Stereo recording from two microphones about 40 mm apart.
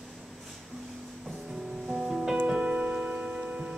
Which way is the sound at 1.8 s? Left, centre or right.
Centre.